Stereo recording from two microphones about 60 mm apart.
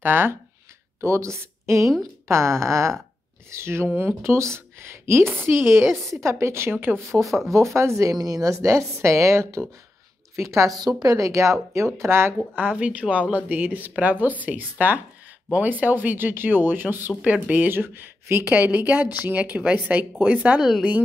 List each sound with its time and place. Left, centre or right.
0.0 s speech: right
1.0 s a woman's voice: right
6.0 s speech: right
7.2 s speech: centre
7.5 s a woman's voice: right
8.1 s a woman's voice: right
11.0 s a woman's voice: right
11.7 s speech: right
12.5 s speech: right
18.4 s speech: right